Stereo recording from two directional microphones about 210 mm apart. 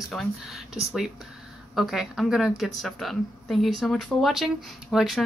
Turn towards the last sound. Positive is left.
turn(degrees=0)  # may be behind; listen again after turning